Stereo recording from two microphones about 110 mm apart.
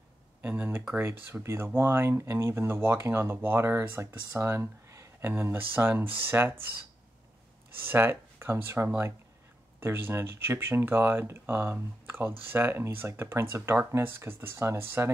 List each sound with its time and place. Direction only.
0.4 s speech: 20° right (ahead or behind)
7.8 s speech: 20° right (ahead or behind)